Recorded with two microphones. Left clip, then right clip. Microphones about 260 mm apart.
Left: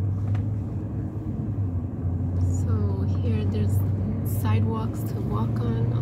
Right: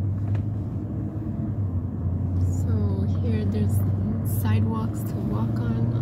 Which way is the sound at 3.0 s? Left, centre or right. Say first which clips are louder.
Right 1 dB; centre.